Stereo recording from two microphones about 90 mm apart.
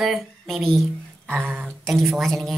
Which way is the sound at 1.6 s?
5° left (ahead or behind).